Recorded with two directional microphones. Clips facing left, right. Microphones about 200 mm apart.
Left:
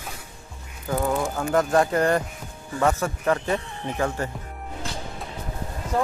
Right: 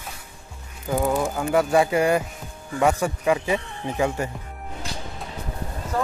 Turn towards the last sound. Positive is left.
turn(degrees=20)  # may be behind; listen again after turning